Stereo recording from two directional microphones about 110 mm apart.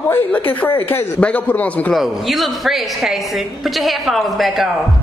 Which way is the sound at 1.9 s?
Centre (ahead or behind).